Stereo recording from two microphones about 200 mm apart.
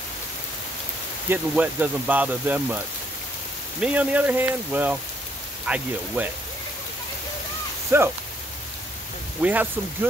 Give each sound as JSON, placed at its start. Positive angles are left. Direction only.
{"t": 1.3, "sound": "speech", "side_deg": -5}
{"t": 3.8, "sound": "speech", "side_deg": -5}
{"t": 7.9, "sound": "speech", "side_deg": -15}
{"t": 9.4, "sound": "speech", "side_deg": -10}